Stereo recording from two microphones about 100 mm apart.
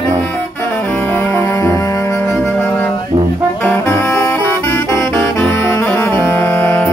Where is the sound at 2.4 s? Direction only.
20° left (ahead or behind).